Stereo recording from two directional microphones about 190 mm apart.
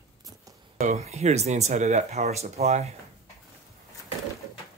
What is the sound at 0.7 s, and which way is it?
Speech, 40° right (ahead or behind).